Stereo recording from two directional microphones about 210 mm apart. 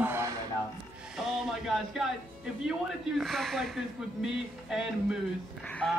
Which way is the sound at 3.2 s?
Centre (ahead or behind).